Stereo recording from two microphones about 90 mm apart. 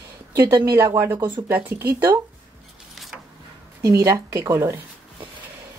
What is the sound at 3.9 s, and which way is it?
Speech, 35° right (ahead or behind).